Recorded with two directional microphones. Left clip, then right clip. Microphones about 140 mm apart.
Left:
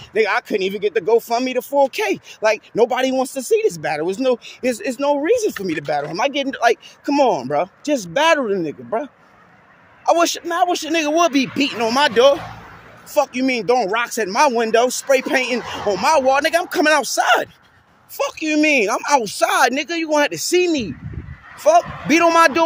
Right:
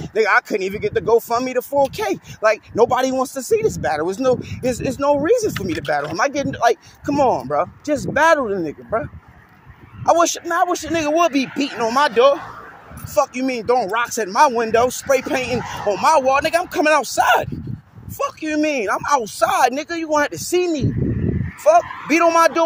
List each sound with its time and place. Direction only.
0.0 s a sound: 10° left (ahead or behind)
0.5 s speech: 10° left (ahead or behind)
6.5 s speech: 20° left (ahead or behind)
10.1 s speech: 20° left (ahead or behind)
18.1 s speech: 35° left (ahead or behind)